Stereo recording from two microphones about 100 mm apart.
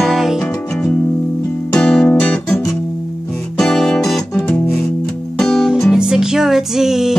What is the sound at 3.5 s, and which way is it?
Music, 5° left (ahead or behind).